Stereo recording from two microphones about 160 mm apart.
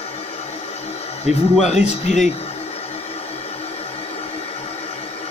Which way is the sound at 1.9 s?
45° left (ahead or behind).